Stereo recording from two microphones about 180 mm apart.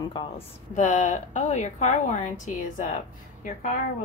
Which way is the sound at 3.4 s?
45° left (ahead or behind).